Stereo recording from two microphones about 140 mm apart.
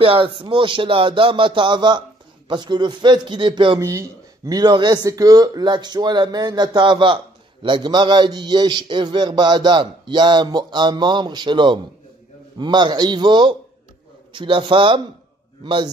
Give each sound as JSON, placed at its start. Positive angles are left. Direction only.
{"t": 0.0, "sound": "a man's voice", "side_deg": -40}